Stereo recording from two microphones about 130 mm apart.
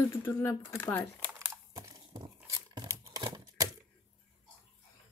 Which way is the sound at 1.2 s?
20° right (ahead or behind).